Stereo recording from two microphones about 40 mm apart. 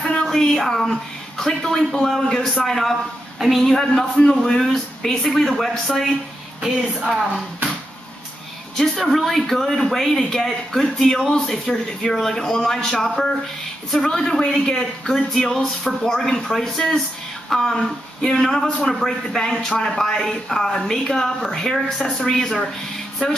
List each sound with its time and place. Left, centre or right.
0.0 s a sound: centre
0.3 s a man's voice: centre
3.6 s a man's voice: centre
8.7 s speech: centre